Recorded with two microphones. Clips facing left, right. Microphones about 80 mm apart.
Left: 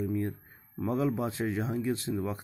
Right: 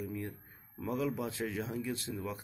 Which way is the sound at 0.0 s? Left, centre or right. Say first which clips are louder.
Left 8 dB; left.